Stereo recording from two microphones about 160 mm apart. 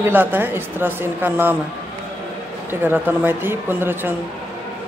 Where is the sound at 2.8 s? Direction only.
15° right (ahead or behind).